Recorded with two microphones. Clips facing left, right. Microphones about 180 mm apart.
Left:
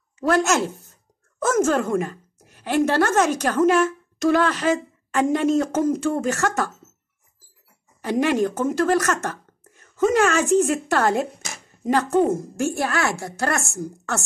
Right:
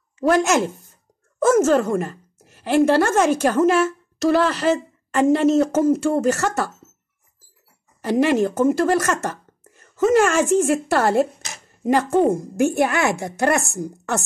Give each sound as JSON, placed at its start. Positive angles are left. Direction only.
{"t": 0.2, "sound": "speech", "side_deg": -10}
{"t": 8.0, "sound": "a woman's voice", "side_deg": -10}